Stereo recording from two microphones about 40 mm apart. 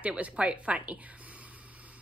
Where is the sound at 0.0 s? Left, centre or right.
Right.